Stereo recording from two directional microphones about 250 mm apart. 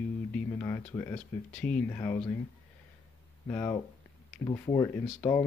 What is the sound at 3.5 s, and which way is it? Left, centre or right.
Speech, centre.